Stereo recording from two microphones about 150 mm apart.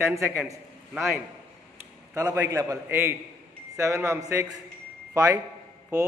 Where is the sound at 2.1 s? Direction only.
20° right (ahead or behind).